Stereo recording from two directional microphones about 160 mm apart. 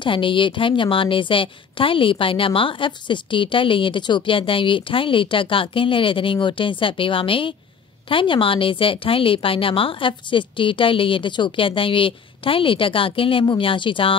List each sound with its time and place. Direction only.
0.0 s a woman's voice: 30° left (ahead or behind)